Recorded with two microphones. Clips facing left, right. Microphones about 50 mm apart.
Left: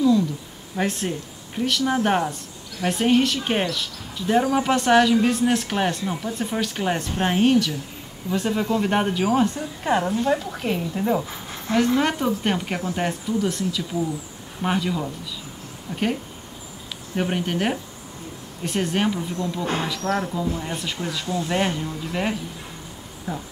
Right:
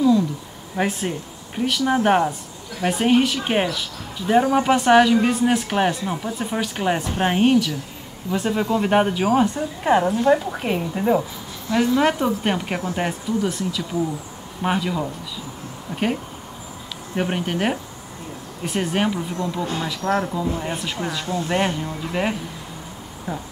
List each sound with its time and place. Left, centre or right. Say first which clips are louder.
0.7 s speech: right 2 dB; centre
19.6 s speech: even; left
19.9 s speech: right 2 dB; centre
20.4 s a woman's voice: right 2 dB; right
20.7 s speech: right 2 dB; centre